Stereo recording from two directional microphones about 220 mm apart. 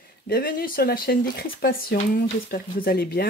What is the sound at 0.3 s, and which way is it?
Speech, 40° left (ahead or behind).